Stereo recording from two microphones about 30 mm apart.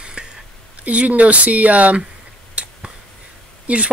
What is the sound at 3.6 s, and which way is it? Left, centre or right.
Speech, right.